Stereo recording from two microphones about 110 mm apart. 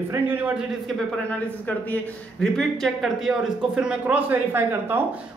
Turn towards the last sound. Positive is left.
turn(degrees=-15)  # may be behind; listen again after turning